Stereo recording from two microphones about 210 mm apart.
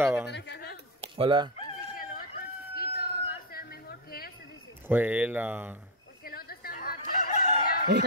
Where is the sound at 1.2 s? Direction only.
25° right (ahead or behind).